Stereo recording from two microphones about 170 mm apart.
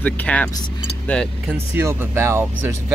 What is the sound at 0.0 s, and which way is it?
Speech, 10° left (ahead or behind).